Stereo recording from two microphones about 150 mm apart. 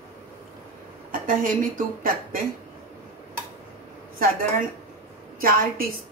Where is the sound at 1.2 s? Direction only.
65° right (ahead or behind).